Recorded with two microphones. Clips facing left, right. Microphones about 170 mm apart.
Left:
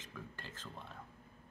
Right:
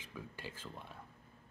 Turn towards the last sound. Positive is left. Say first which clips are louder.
# right 2 dB
turn(degrees=-10)  # may be behind; listen again after turning